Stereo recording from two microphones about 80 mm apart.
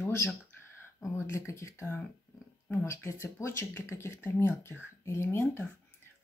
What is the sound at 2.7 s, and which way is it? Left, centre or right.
Speech, left.